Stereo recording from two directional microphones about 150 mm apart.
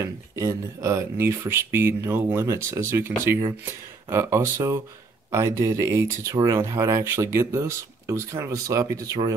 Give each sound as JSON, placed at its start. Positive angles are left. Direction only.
{"t": 0.0, "sound": "speech", "side_deg": -20}